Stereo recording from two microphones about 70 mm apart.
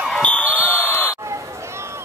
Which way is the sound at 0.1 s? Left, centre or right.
Centre.